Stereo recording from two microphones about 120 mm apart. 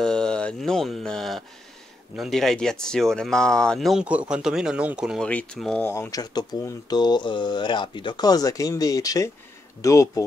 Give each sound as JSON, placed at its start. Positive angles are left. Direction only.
{"t": 0.0, "sound": "a sound", "side_deg": 5}
{"t": 2.1, "sound": "speech", "side_deg": 0}
{"t": 5.2, "sound": "speech", "side_deg": 10}
{"t": 5.9, "sound": "speech", "side_deg": 25}